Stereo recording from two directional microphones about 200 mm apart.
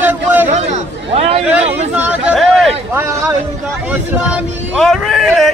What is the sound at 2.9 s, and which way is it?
Speech, 15° right (ahead or behind).